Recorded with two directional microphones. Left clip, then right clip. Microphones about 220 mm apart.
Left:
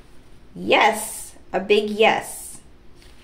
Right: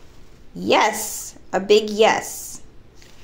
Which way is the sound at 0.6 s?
25° right (ahead or behind).